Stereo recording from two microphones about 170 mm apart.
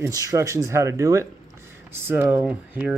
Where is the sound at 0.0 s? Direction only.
20° right (ahead or behind).